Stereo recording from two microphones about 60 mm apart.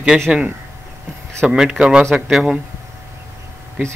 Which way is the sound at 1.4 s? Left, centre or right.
Centre.